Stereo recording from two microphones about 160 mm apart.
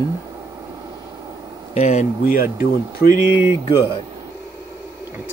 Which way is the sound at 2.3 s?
65° left (ahead or behind).